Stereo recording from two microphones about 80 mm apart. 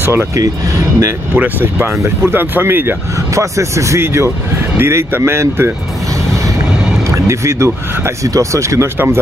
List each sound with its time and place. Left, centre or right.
0.0 s speech: right
1.3 s speech: right
3.3 s speech: right
7.1 s speech: right